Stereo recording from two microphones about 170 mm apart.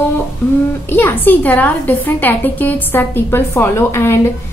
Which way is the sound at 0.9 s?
10° left (ahead or behind).